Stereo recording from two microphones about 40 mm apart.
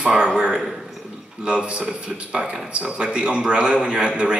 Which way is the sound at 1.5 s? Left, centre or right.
Right.